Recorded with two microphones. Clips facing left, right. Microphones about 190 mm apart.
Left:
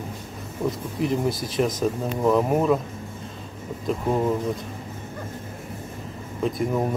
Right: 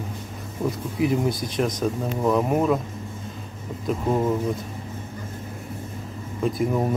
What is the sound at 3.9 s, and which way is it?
Speech, centre (ahead or behind).